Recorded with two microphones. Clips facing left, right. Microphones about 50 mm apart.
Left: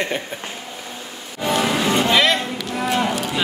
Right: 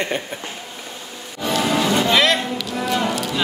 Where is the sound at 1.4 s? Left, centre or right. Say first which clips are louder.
Left 1 dB; left.